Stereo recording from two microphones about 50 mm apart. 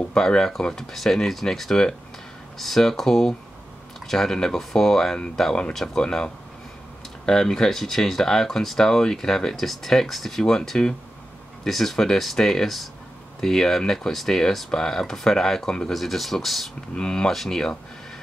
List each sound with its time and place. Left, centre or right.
0.1 s speech: centre
16.9 s speech: centre